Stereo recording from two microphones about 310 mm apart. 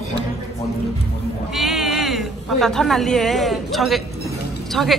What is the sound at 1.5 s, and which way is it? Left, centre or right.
Speech, centre.